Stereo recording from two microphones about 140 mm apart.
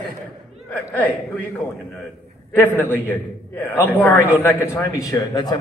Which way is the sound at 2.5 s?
15° left (ahead or behind).